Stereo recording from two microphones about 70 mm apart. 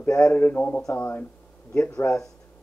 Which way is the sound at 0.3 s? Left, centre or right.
Left.